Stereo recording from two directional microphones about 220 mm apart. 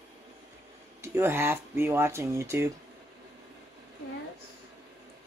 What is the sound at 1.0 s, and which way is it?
Speech, 10° right (ahead or behind).